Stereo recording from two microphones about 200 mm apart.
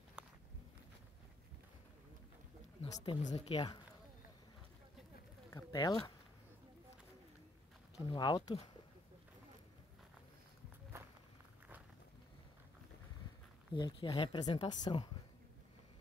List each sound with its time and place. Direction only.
0.2 s walk: 5° right (ahead or behind)
2.8 s speech: 25° left (ahead or behind)
5.5 s speech: 15° left (ahead or behind)
8.1 s speech: 20° left (ahead or behind)
10.9 s walk: 10° right (ahead or behind)
13.7 s speech: 25° left (ahead or behind)